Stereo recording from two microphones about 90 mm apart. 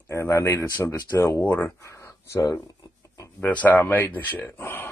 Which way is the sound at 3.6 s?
20° left (ahead or behind).